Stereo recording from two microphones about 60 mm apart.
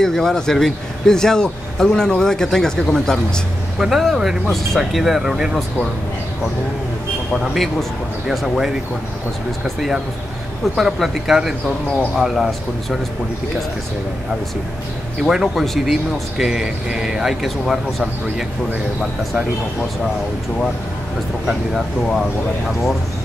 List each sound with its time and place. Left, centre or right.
0.0 s speech: centre
3.8 s speech: centre
7.3 s speech: centre
9.8 s speech: centre
15.2 s speech: centre
22.0 s speech: centre